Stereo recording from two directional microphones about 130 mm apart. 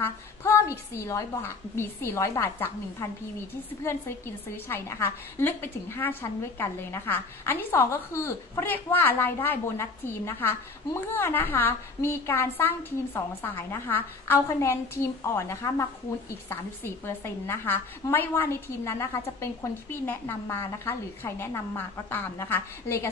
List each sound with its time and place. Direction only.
0.0 s a woman's voice: 20° left (ahead or behind)
4.6 s a woman's voice: 20° left (ahead or behind)